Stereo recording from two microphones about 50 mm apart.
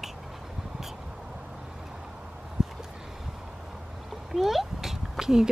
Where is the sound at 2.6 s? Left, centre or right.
Centre.